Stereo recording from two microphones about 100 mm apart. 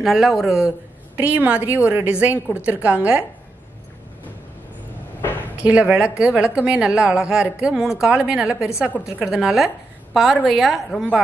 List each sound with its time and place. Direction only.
0.0 s a woman's voice: centre (ahead or behind)
1.1 s a woman's voice: 15° right (ahead or behind)
5.6 s a woman's voice: 15° right (ahead or behind)